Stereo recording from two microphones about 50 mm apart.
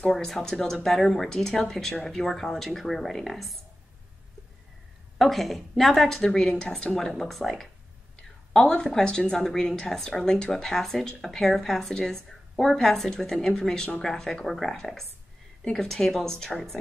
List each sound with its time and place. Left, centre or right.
0.1 s speech: centre
5.2 s speech: centre
8.5 s a woman's voice: centre
15.6 s a woman's voice: centre